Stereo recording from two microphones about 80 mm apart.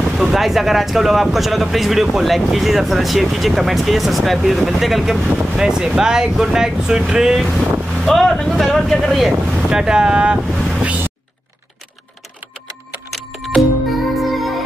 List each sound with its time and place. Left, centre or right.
0.1 s speech: centre
10.5 s vehicle: centre
10.8 s a sound: centre
13.6 s music: centre